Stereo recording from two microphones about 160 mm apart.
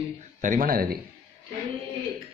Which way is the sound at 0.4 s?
55° right (ahead or behind).